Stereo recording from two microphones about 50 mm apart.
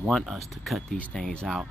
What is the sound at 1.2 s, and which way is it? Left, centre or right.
Speech, centre.